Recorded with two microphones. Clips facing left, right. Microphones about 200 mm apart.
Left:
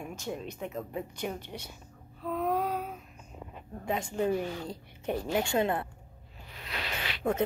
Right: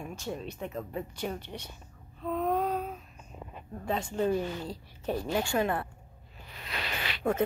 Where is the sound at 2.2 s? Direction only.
5° left (ahead or behind).